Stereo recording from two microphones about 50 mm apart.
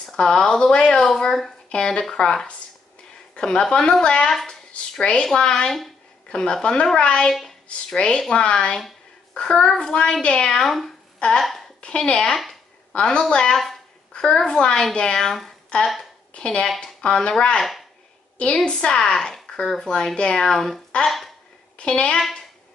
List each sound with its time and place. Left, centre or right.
0.0 s speech: centre
4.3 s a sound: centre
5.2 s a child's voice: centre
11.4 s a sound: centre
11.8 s a woman's voice: left
15.7 s speech: left
18.7 s speech: centre
20.5 s speech: centre
21.7 s a woman's voice: left